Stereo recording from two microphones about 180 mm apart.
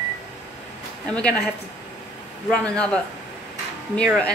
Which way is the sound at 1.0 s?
5° left (ahead or behind).